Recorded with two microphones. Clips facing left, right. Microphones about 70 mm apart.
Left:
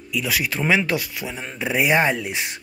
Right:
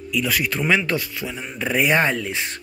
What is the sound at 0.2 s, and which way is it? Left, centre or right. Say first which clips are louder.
A man's voice: right 1 dB; centre.